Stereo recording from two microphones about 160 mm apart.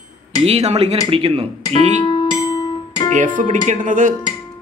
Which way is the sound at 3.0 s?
55° right (ahead or behind).